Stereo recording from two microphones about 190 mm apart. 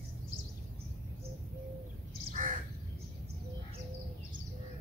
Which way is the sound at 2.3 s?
45° right (ahead or behind).